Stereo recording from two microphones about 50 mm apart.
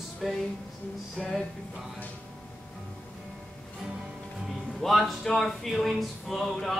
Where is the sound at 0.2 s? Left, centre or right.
Centre.